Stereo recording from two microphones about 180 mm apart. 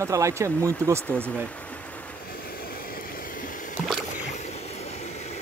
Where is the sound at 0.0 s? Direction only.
15° right (ahead or behind).